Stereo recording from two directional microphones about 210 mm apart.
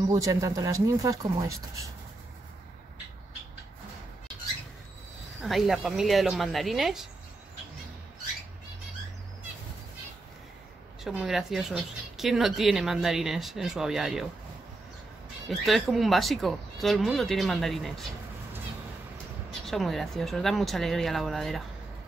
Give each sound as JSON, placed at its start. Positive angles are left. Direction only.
{"t": 0.1, "sound": "speech", "side_deg": -15}
{"t": 5.4, "sound": "speech", "side_deg": 0}
{"t": 11.1, "sound": "speech", "side_deg": 0}
{"t": 15.5, "sound": "speech", "side_deg": 0}
{"t": 19.6, "sound": "speech", "side_deg": 0}